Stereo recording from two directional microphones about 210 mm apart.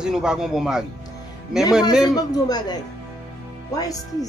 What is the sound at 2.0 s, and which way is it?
A man's voice, 20° left (ahead or behind).